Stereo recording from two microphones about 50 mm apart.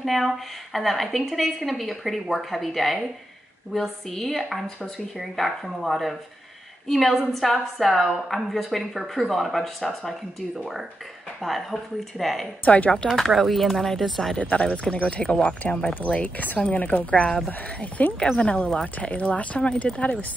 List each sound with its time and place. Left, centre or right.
0.0 s a woman's voice: centre
11.4 s a woman's voice: centre
12.6 s speech: left
12.9 s speech: centre
13.4 s a woman's voice: centre
14.4 s speech: left
18.2 s speech: left
20.0 s speech: left